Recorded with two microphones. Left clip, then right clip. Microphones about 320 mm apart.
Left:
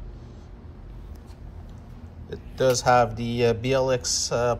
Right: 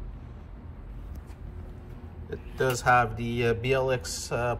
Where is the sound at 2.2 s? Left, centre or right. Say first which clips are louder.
Left 6 dB; centre.